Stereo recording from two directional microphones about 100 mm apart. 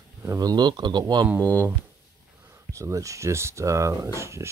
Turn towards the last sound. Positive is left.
turn(degrees=-30)  # may be behind; listen again after turning